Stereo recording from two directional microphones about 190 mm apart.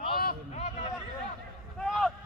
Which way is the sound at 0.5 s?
35° left (ahead or behind).